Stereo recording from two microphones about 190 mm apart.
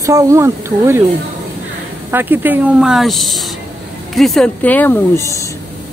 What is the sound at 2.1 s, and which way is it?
Speech, 10° right (ahead or behind).